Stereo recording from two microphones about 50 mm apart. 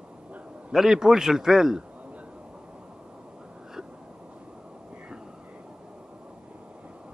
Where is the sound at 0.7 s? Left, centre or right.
Centre.